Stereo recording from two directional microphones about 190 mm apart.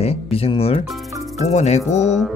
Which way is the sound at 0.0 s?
30° left (ahead or behind).